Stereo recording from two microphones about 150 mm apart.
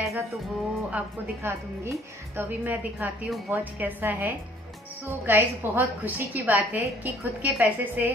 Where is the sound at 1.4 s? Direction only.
15° right (ahead or behind).